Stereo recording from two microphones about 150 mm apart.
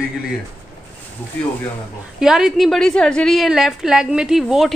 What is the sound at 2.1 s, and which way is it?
A woman's voice, 5° right (ahead or behind).